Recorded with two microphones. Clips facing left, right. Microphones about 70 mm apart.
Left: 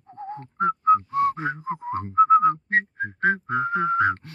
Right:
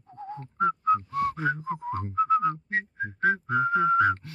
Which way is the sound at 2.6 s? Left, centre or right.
Left.